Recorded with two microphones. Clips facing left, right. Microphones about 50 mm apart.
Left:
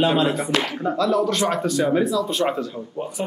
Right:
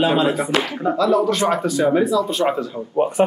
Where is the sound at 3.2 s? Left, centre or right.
Right.